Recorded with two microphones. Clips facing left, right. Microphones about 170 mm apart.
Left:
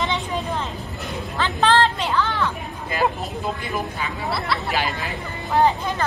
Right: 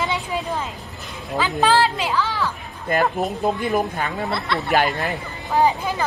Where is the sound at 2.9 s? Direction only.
55° right (ahead or behind).